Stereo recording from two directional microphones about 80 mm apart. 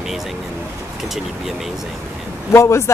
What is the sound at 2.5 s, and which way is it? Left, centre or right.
Speech, left.